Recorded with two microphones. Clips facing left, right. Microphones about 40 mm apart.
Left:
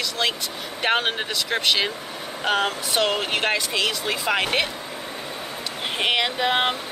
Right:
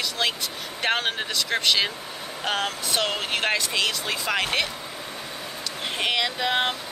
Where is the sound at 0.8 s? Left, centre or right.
Centre.